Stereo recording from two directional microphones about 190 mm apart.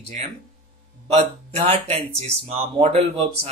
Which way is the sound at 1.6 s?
30° right (ahead or behind).